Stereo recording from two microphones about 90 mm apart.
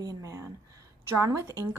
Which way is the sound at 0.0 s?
40° right (ahead or behind).